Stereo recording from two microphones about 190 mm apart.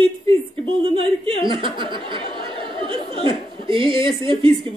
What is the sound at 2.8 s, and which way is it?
Chuckle, 25° right (ahead or behind).